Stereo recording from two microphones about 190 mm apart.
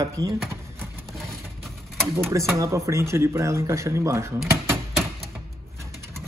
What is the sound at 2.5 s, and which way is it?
Speech, 15° right (ahead or behind).